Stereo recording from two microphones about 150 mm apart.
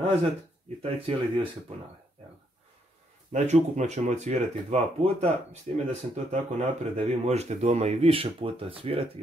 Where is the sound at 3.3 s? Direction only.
50° right (ahead or behind).